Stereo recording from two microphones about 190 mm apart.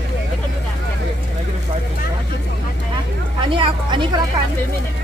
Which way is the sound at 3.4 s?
25° right (ahead or behind).